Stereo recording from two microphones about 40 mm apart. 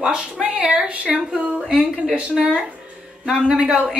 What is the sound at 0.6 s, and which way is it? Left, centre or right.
A woman's voice, right.